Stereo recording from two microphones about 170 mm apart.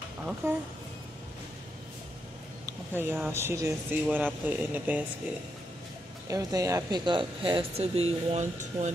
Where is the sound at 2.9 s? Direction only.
10° right (ahead or behind).